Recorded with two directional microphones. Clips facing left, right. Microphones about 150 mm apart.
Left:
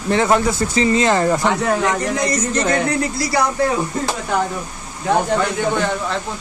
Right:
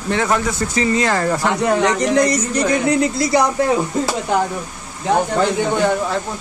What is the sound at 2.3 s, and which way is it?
Speech, 10° right (ahead or behind).